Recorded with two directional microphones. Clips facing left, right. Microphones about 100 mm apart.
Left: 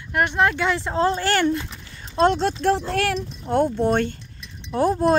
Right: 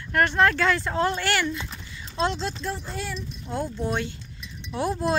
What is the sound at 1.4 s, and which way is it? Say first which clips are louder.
Speech: left 7 dB; 50° left (ahead or behind).